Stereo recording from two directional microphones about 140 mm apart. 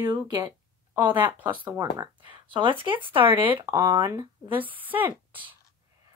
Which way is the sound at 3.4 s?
20° right (ahead or behind).